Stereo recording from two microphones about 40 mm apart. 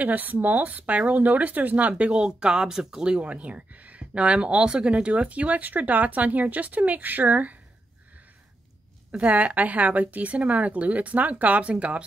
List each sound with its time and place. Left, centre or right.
0.0 s speech: right; by 3.2 s centre
3.2 s speech: right
9.3 s speech: right